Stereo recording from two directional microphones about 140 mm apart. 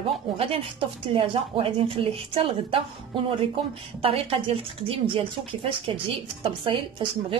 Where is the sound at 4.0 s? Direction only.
45° right (ahead or behind).